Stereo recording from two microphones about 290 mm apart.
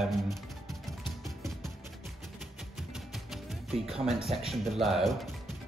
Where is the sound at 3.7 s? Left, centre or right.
Centre.